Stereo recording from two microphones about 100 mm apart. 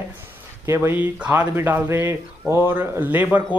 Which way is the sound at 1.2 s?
15° right (ahead or behind).